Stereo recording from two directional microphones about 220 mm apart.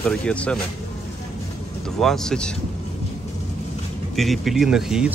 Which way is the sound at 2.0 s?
Centre (ahead or behind).